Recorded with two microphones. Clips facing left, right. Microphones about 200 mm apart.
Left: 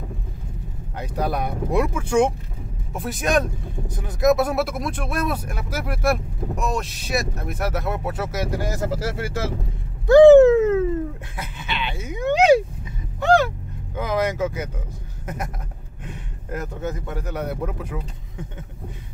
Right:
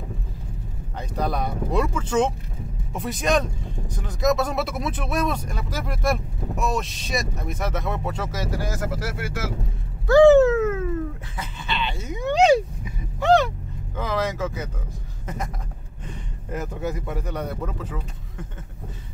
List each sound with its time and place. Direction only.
0.9 s speech: 10° left (ahead or behind)
2.9 s speech: centre (ahead or behind)
8.7 s speech: 30° left (ahead or behind)
10.0 s speech: 20° left (ahead or behind)
13.9 s speech: 10° left (ahead or behind)